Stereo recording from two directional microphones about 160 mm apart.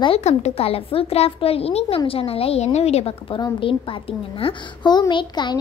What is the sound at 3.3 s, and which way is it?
A woman's voice, 25° left (ahead or behind).